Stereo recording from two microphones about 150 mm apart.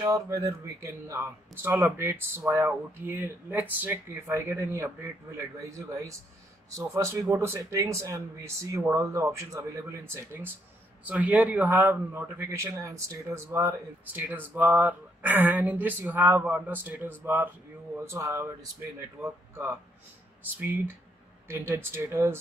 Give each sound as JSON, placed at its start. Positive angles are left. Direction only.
{"t": 0.0, "sound": "a man's voice", "side_deg": -20}